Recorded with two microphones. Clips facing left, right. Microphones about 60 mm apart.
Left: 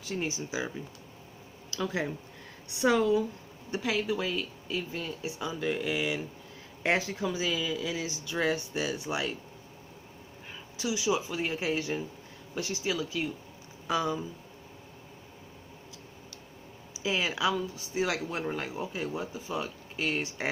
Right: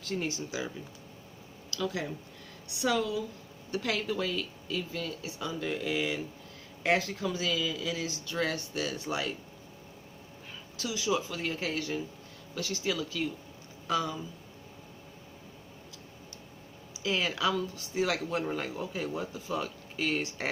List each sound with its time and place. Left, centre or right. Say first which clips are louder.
0.0 s speech: even; centre
1.7 s speech: left 2 dB; left
3.8 s speech: left 2 dB; centre
6.8 s speech: even; left
10.8 s speech: left 2 dB; centre
12.8 s speech: even; centre
17.0 s speech: left 1 dB; centre